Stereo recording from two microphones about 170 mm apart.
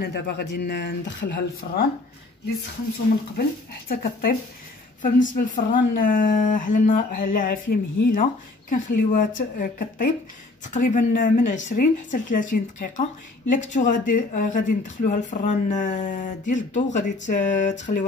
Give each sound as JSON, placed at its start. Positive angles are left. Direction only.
{"t": 0.0, "sound": "speech", "side_deg": 70}
{"t": 3.9, "sound": "speech", "side_deg": 60}
{"t": 5.7, "sound": "speech", "side_deg": 55}